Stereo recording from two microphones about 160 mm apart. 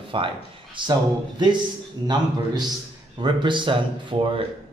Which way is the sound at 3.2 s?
30° right (ahead or behind).